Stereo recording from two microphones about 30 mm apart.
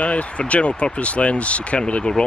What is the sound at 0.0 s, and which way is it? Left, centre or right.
Speech, left.